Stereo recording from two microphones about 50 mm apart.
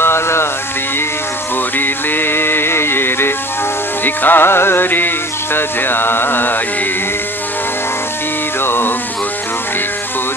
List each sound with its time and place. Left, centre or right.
0.0 s music: left
1.8 s music: left
8.5 s music: left